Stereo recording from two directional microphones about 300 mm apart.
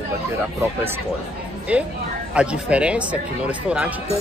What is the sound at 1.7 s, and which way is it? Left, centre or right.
Speech, centre.